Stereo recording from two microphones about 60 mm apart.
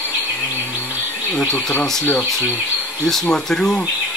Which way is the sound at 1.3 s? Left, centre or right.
Centre.